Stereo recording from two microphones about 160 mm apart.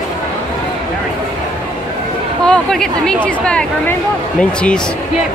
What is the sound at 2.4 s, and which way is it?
A woman's voice, 5° left (ahead or behind).